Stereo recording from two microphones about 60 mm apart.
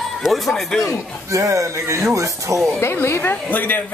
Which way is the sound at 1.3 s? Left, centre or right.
Right.